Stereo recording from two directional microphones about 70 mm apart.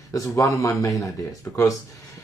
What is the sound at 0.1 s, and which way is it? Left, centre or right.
Speech, left.